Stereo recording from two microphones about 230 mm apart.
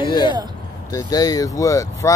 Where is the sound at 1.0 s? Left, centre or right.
Centre.